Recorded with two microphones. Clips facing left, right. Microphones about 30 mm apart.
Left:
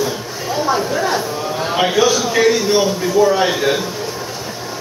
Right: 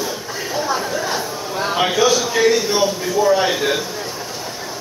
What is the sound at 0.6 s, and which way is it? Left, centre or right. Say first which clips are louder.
Speech: left 6 dB; centre.